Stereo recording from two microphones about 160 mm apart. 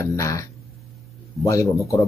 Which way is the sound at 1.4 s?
20° left (ahead or behind).